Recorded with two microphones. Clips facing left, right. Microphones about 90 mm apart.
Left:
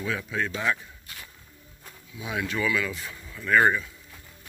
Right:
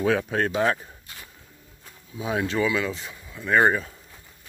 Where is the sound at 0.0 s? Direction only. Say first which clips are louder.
Right 7 dB; 60° right (ahead or behind).